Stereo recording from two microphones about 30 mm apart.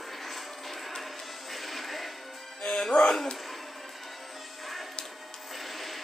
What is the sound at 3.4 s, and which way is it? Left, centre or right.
Music, centre.